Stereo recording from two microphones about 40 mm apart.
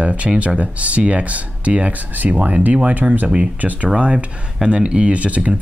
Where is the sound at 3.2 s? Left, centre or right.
Right.